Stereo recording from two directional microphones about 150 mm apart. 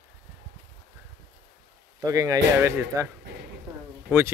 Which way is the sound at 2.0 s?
25° right (ahead or behind).